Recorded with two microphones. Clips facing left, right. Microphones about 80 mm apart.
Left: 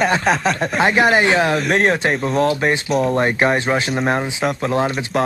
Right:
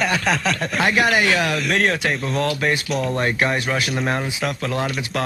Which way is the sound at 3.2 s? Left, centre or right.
Left.